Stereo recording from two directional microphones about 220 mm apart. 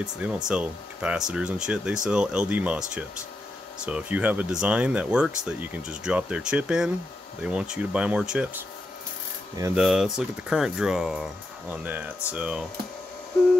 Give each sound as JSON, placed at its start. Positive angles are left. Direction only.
{"t": 0.0, "sound": "speech", "side_deg": -5}
{"t": 9.8, "sound": "speech", "side_deg": 0}